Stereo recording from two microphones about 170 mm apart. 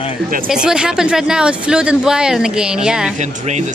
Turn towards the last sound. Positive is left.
turn(degrees=-45)  # may be behind; listen again after turning